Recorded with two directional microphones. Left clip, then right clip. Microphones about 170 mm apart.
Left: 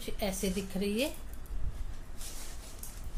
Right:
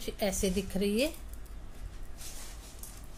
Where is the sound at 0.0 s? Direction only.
30° right (ahead or behind).